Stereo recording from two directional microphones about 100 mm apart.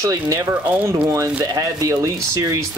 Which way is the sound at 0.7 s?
20° right (ahead or behind).